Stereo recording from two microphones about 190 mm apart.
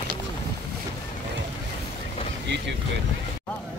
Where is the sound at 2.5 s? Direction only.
65° right (ahead or behind).